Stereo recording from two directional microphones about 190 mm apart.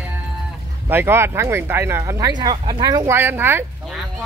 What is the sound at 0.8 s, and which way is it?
Speech, 10° right (ahead or behind).